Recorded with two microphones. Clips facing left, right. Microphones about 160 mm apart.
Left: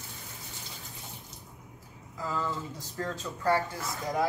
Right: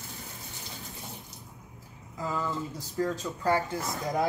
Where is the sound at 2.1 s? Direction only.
15° right (ahead or behind).